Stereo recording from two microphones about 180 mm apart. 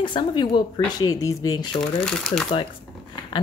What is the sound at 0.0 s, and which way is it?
Speech, 25° left (ahead or behind).